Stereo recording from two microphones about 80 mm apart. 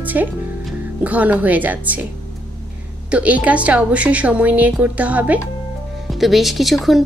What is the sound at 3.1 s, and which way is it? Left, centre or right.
A woman's voice, centre.